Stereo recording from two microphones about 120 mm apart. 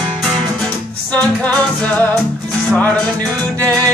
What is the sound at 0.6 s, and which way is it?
Music, 10° left (ahead or behind).